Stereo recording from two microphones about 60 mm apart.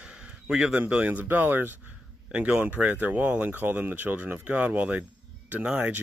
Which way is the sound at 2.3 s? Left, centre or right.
Right.